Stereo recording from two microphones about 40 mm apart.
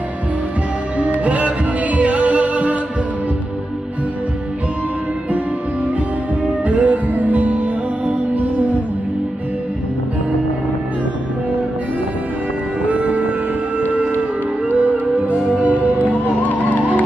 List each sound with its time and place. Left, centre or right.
1.2 s music: right
6.6 s music: right
12.8 s music: right
14.8 s music: right
16.4 s music: left